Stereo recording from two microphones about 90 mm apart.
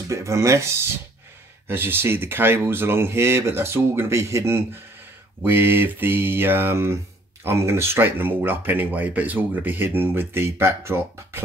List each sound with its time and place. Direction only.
0.1 s speech: 35° right (ahead or behind)